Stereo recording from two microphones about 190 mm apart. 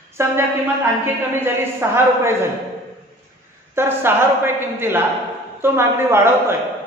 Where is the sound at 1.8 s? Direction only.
10° right (ahead or behind).